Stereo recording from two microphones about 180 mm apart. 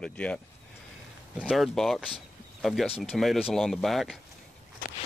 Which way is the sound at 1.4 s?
5° right (ahead or behind).